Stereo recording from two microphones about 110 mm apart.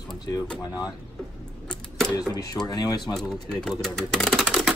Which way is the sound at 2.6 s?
35° left (ahead or behind).